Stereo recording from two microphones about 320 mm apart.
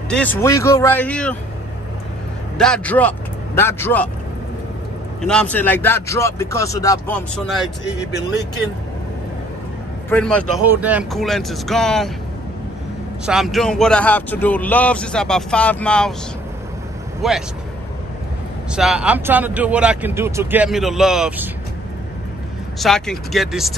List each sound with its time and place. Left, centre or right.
0.1 s speech: centre
2.5 s speech: centre
5.2 s speech: centre
7.8 s speech: left
10.0 s speech: centre
13.2 s speech: centre
17.2 s speech: centre
18.7 s speech: centre
22.8 s speech: centre